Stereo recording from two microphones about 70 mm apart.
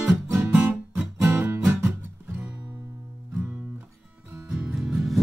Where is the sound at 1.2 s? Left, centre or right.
Right.